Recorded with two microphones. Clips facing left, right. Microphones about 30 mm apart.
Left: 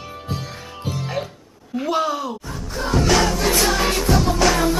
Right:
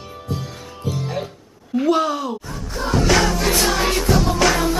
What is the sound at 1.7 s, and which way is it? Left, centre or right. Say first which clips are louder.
Music: right 3 dB; centre.